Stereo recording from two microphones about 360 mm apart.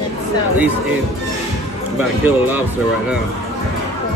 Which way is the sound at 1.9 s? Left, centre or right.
Centre.